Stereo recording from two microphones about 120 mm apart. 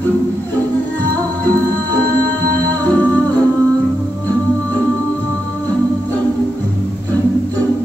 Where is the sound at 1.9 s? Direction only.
15° left (ahead or behind).